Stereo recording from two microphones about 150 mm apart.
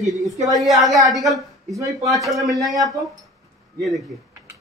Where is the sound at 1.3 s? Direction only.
20° right (ahead or behind).